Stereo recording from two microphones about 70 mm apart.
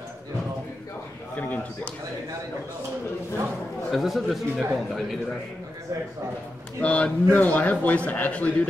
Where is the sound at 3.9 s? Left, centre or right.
Centre.